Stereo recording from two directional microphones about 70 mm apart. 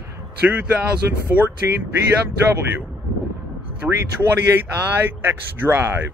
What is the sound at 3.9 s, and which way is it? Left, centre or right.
Speech, right.